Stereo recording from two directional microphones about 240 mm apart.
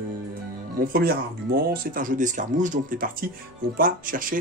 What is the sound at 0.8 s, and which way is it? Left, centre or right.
Speech, right.